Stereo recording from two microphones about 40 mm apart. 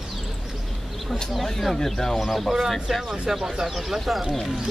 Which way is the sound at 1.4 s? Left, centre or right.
Centre.